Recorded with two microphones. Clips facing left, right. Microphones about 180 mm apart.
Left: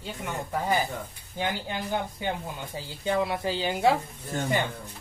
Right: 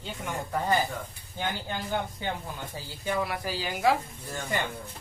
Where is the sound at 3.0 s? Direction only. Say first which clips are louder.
Left 4 dB; 25° left (ahead or behind).